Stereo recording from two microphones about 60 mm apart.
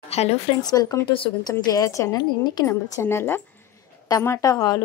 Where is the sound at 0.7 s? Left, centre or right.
Left.